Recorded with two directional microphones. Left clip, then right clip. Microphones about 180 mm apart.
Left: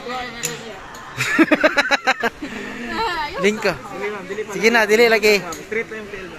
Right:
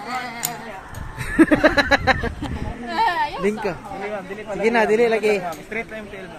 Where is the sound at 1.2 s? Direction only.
5° left (ahead or behind).